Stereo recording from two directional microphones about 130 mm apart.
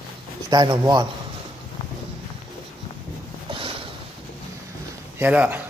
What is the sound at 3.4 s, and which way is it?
Sniff, 45° right (ahead or behind).